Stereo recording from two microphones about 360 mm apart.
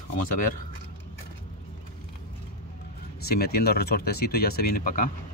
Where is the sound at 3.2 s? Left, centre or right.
Left.